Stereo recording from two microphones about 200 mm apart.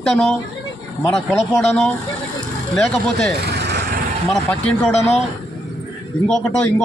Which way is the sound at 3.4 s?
55° right (ahead or behind).